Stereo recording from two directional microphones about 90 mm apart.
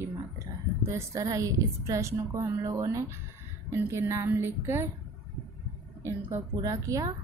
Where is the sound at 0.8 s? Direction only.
30° right (ahead or behind).